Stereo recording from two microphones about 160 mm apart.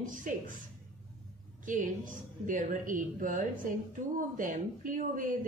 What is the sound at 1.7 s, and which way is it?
Speech, 55° right (ahead or behind).